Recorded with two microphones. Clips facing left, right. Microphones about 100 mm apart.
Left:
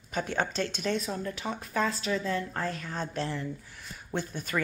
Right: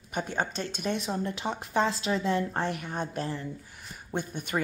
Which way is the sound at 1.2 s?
30° right (ahead or behind).